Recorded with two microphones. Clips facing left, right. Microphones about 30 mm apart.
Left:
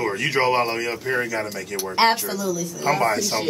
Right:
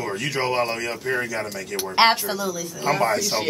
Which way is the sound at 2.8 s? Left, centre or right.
Centre.